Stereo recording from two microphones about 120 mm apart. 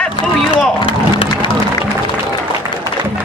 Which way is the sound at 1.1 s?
40° left (ahead or behind).